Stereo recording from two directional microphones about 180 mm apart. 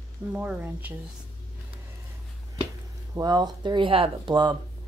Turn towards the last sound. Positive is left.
turn(degrees=-25)  # may be behind; listen again after turning